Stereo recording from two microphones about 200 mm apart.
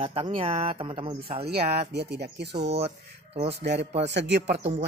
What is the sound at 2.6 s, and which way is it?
Speech, 30° right (ahead or behind).